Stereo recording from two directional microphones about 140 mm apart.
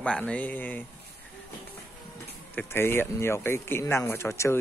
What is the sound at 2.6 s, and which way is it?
Speech, 15° left (ahead or behind).